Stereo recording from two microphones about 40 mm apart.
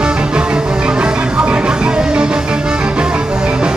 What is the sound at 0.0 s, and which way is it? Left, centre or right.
Music, right.